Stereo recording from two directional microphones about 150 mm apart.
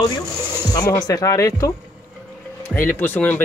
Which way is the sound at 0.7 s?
25° left (ahead or behind).